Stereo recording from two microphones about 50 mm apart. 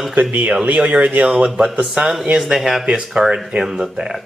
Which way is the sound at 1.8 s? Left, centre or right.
Centre.